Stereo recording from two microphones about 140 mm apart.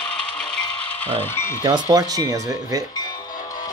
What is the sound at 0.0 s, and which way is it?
Ratchet, 5° left (ahead or behind).